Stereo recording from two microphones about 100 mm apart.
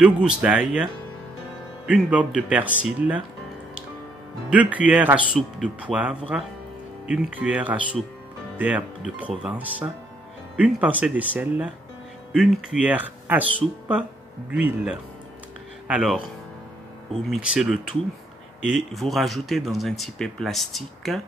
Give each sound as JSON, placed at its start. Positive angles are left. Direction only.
{"t": 0.0, "sound": "speech", "side_deg": -10}
{"t": 2.0, "sound": "speech", "side_deg": -15}
{"t": 4.5, "sound": "speech", "side_deg": -15}
{"t": 12.8, "sound": "speech", "side_deg": -15}
{"t": 17.3, "sound": "speech", "side_deg": -5}